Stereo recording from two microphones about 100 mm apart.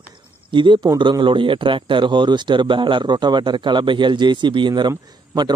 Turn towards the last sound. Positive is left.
turn(degrees=-45)  # may be behind; listen again after turning